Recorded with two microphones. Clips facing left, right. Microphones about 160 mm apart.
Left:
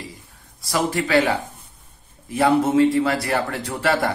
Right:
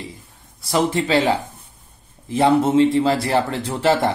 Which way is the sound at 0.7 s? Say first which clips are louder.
Right 3 dB; 25° right (ahead or behind).